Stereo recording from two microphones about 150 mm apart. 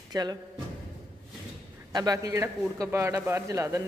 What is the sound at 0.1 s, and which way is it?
Speech, 25° right (ahead or behind).